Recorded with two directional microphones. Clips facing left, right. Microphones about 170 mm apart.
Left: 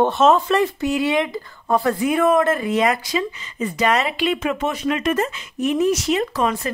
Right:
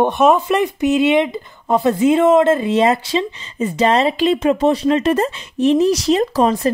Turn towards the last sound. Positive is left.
turn(degrees=-35)  # may be behind; listen again after turning